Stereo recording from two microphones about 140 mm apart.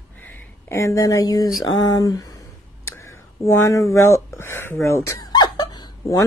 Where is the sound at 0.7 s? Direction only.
20° left (ahead or behind).